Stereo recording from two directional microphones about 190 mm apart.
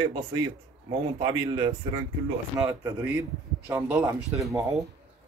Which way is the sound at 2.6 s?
10° right (ahead or behind).